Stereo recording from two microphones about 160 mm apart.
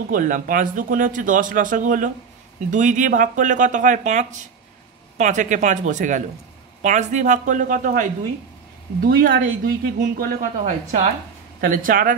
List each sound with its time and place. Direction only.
0.1 s speech: 60° right (ahead or behind)